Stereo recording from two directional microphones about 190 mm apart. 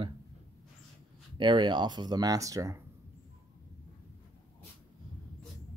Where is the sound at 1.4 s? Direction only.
25° right (ahead or behind).